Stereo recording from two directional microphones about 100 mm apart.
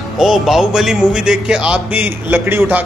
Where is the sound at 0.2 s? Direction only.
Centre (ahead or behind).